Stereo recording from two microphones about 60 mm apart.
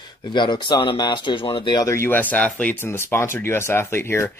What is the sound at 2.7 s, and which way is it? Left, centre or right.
Speech, left.